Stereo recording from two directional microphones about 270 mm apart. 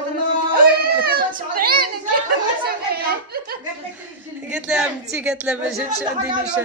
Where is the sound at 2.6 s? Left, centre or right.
Right.